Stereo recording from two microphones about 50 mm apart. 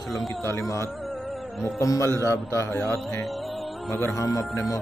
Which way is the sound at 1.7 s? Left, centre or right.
Left.